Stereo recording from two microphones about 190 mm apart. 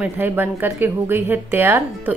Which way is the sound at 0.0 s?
10° right (ahead or behind).